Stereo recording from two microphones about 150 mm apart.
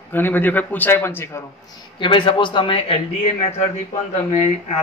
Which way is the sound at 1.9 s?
35° left (ahead or behind).